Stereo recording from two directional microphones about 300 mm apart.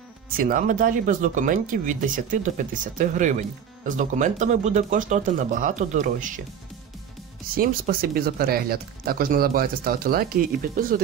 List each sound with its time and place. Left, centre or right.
0.4 s speech: right
7.5 s speech: right